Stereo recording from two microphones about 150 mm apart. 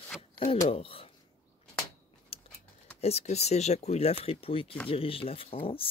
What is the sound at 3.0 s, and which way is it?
Speech, 45° left (ahead or behind).